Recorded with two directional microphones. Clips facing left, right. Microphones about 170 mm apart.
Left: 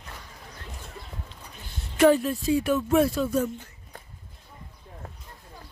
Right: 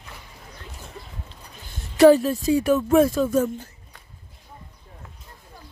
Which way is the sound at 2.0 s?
40° right (ahead or behind).